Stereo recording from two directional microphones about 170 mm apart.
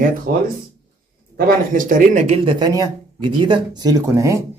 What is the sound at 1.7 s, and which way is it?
Speech, 50° right (ahead or behind).